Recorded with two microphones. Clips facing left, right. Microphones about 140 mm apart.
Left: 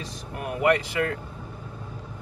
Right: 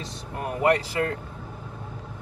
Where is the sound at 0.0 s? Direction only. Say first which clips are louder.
Right 1 dB; 35° right (ahead or behind).